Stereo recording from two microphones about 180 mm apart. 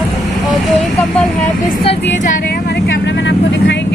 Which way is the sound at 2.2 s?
60° left (ahead or behind).